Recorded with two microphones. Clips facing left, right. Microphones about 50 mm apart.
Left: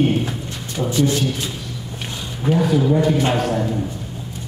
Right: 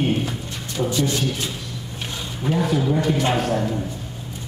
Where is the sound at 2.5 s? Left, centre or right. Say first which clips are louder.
Left 4 dB; centre.